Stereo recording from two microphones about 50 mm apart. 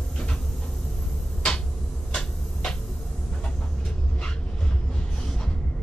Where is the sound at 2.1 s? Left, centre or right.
Centre.